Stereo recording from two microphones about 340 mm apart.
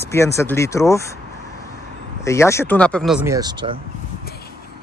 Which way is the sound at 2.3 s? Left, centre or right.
Centre.